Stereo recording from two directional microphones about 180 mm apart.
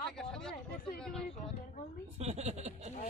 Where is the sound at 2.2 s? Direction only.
40° right (ahead or behind).